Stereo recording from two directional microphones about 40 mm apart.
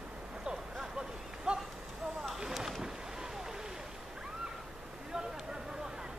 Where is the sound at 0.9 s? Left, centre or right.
Centre.